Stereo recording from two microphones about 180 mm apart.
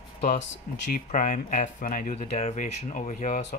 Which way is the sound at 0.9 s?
45° left (ahead or behind).